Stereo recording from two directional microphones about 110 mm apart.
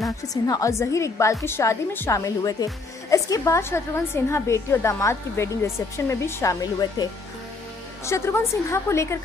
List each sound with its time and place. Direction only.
0.3 s a woman's voice: 30° left (ahead or behind)